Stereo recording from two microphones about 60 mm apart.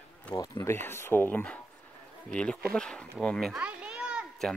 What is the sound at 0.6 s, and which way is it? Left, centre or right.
Speech, left.